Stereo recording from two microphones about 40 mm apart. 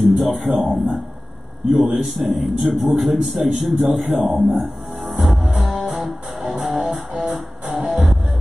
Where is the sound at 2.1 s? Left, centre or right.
Centre.